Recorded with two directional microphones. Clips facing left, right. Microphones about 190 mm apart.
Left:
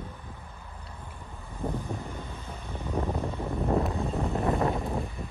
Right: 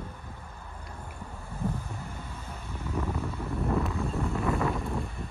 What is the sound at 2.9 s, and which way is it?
Wind noise, 35° left (ahead or behind).